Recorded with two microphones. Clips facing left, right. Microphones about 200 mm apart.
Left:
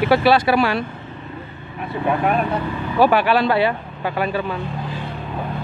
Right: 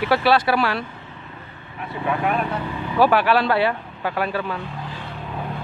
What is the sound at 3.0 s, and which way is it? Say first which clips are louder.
Speech: left 2 dB; centre (ahead or behind).